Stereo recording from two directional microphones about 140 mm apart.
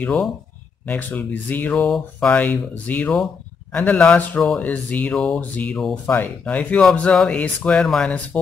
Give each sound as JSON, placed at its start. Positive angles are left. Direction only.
{"t": 0.0, "sound": "speech", "side_deg": 5}